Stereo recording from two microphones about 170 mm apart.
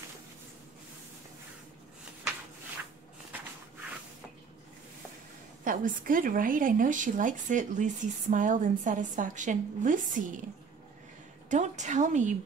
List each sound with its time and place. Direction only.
5.6 s a woman's voice: 55° right (ahead or behind)
11.4 s a woman's voice: 45° right (ahead or behind)